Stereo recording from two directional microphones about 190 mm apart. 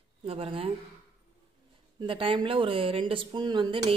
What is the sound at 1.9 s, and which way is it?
Speech, 25° right (ahead or behind).